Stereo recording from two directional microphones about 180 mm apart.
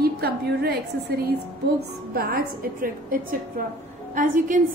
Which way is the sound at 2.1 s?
55° right (ahead or behind).